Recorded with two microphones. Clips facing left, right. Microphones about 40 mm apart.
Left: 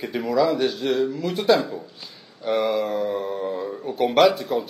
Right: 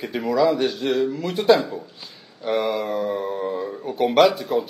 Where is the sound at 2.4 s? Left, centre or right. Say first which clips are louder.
Left 1 dB; centre.